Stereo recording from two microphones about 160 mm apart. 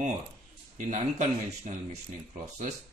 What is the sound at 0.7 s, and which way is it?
Speech, 50° right (ahead or behind).